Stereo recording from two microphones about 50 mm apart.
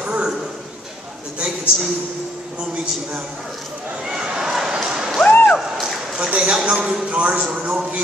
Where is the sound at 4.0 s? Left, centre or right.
Centre.